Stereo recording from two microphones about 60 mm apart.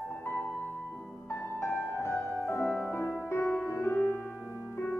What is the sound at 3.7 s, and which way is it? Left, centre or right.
Music, left.